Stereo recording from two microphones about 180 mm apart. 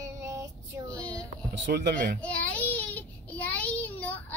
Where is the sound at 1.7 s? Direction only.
60° right (ahead or behind).